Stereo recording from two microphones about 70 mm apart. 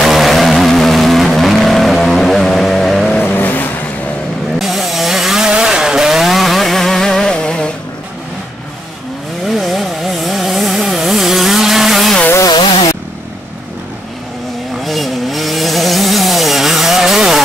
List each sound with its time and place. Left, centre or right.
0.0 s vehicle: centre
3.3 s vehicle: left
4.6 s chainsaw: centre
9.5 s a sound: centre
14.8 s wood: centre